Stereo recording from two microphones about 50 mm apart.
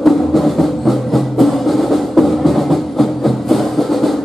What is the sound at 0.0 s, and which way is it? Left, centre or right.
Music, centre.